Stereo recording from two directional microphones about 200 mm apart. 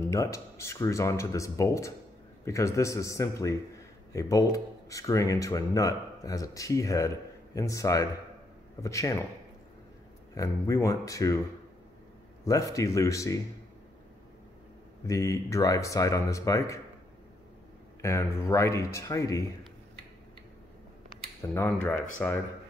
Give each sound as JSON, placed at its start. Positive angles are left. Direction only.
{"t": 0.0, "sound": "speech", "side_deg": 15}
{"t": 10.3, "sound": "speech", "side_deg": 15}
{"t": 12.4, "sound": "speech", "side_deg": 15}
{"t": 15.0, "sound": "speech", "side_deg": 15}
{"t": 18.0, "sound": "speech", "side_deg": 15}
{"t": 21.4, "sound": "speech", "side_deg": 10}